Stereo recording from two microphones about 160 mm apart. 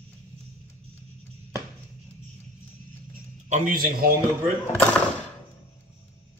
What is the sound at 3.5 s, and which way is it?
Speech, 55° right (ahead or behind).